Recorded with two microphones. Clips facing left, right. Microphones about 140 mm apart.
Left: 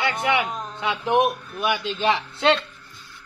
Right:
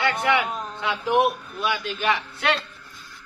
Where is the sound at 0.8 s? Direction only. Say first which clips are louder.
Left 1 dB; 20° left (ahead or behind).